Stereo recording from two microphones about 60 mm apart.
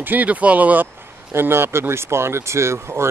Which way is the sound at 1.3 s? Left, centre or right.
Right.